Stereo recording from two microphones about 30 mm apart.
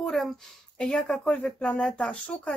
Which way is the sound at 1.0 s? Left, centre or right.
Left.